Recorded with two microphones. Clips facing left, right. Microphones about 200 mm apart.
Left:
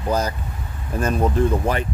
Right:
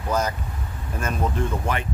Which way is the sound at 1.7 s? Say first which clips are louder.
Left 4 dB; 35° left (ahead or behind).